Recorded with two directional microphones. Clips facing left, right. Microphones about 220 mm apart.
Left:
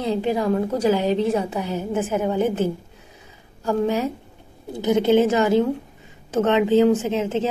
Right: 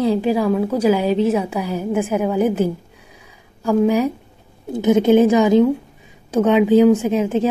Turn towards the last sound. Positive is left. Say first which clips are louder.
# right 5 dB
turn(degrees=-10)  # may be behind; listen again after turning